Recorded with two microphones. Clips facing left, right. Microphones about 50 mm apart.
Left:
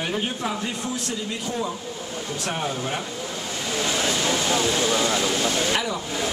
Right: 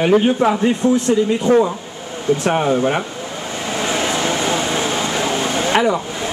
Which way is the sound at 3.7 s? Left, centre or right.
Right.